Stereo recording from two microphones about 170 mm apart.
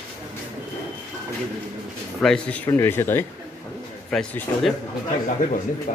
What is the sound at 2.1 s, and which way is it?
Speech, 5° left (ahead or behind).